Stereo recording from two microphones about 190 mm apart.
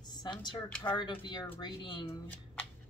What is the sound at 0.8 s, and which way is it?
Speech, 25° left (ahead or behind).